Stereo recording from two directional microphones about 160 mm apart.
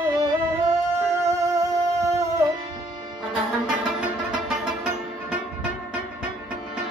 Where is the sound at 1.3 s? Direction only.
20° right (ahead or behind).